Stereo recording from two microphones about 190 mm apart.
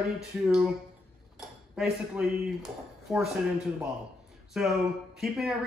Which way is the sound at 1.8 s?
5° right (ahead or behind).